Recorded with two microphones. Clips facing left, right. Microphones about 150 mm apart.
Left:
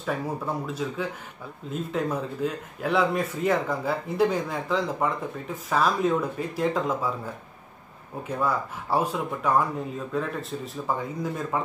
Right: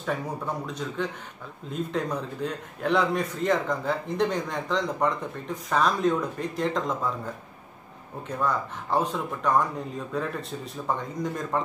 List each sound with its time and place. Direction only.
0.7 s a man's voice: 5° left (ahead or behind)
8.2 s a man's voice: 5° left (ahead or behind)